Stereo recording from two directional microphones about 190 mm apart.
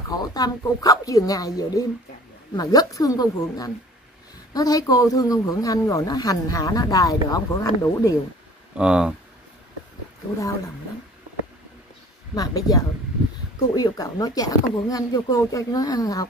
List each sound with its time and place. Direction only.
0.1 s speech: 20° left (ahead or behind)
8.7 s speech: 5° right (ahead or behind)
12.4 s speech: 20° left (ahead or behind)